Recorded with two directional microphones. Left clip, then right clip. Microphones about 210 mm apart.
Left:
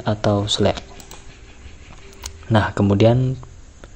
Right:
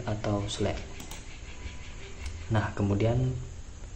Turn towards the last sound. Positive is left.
turn(degrees=45)  # may be behind; listen again after turning